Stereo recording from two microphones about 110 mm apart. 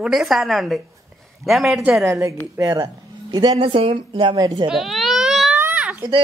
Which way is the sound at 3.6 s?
55° right (ahead or behind).